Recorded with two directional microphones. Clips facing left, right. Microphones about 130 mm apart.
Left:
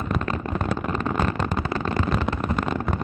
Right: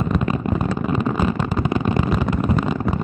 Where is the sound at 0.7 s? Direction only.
5° right (ahead or behind).